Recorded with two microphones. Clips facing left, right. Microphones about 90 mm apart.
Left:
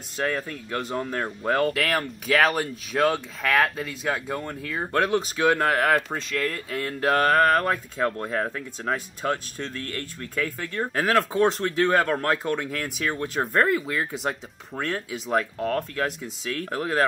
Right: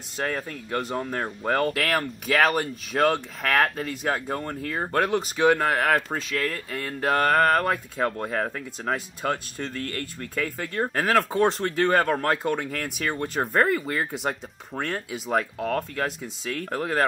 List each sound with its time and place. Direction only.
0.2 s speech: centre (ahead or behind)